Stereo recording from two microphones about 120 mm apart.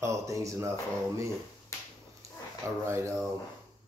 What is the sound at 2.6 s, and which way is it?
Speech, 20° right (ahead or behind).